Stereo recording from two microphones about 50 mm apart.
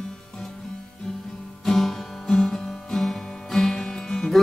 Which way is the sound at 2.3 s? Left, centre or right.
Centre.